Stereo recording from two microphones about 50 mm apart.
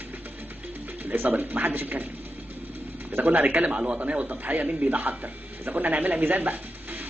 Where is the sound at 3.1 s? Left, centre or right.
Right.